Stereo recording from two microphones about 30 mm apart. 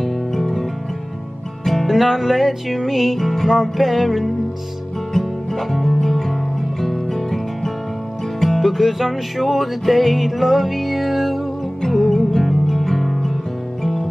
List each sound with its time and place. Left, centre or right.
0.0 s music: centre
1.9 s music: centre
5.1 s music: centre
8.6 s music: centre
11.8 s music: centre
12.2 s music: centre
12.4 s music: centre